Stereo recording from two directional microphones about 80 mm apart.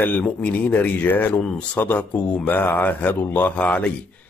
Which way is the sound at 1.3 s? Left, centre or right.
Centre.